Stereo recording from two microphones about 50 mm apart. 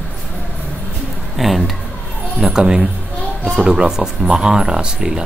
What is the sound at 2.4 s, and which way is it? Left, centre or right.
Speech, centre.